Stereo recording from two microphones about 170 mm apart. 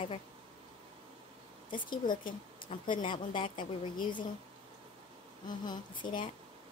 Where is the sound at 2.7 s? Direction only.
40° left (ahead or behind).